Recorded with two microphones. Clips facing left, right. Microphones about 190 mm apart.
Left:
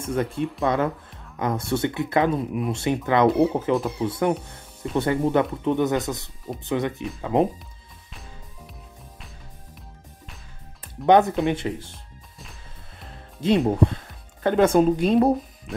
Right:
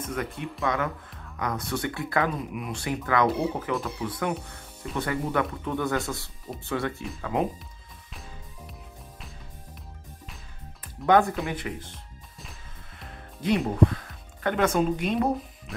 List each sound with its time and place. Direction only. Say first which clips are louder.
0.0 s speech: left 7 dB; 30° left (ahead or behind)
11.1 s speech: left 4 dB; 20° left (ahead or behind)
11.9 s music: even; centre (ahead or behind)
13.1 s music: left 4 dB; 25° left (ahead or behind)
13.8 s speech: even; 30° left (ahead or behind)